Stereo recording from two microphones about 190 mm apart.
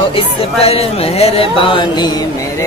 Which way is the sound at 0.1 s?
30° left (ahead or behind).